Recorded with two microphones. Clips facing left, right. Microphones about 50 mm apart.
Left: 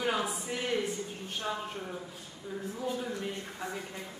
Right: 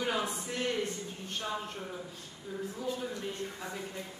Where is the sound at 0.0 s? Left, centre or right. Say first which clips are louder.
Left 1 dB; centre.